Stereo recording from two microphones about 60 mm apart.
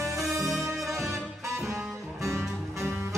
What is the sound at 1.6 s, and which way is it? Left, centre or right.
Music, right.